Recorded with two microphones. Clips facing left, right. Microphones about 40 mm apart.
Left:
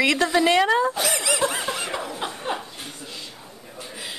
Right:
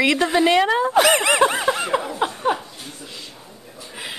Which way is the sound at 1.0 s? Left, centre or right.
Right.